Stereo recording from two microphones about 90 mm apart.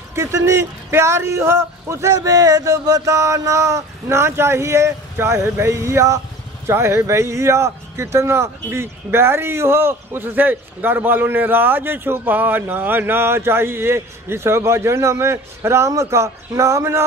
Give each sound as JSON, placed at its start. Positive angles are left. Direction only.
{"t": 0.1, "sound": "speech", "side_deg": -35}